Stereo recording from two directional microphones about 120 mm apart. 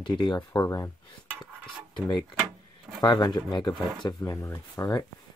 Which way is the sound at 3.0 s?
35° left (ahead or behind).